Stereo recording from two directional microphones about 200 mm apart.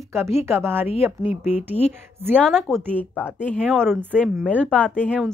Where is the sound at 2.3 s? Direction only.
Centre (ahead or behind).